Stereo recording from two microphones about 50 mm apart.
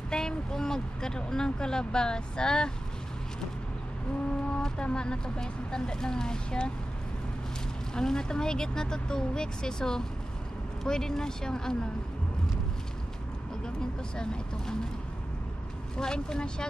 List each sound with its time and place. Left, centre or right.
0.1 s speech: centre
4.5 s a sound: centre
4.8 s speech: centre
7.9 s speech: centre
13.7 s speech: centre
16.0 s speech: centre